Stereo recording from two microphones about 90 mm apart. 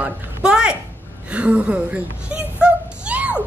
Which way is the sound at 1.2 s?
10° right (ahead or behind).